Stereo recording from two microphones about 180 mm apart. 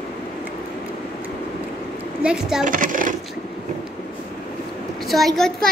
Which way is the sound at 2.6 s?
50° right (ahead or behind).